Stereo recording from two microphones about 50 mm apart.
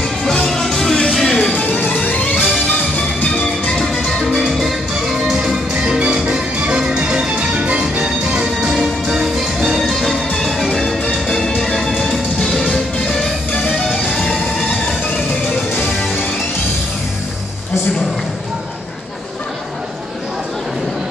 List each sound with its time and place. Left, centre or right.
0.0 s music: centre
1.5 s music: left; by 14.5 s centre